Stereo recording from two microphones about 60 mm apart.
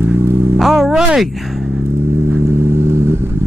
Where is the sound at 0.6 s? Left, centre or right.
Centre.